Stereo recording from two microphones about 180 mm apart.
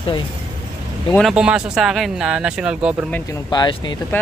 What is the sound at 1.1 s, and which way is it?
Speech, centre (ahead or behind).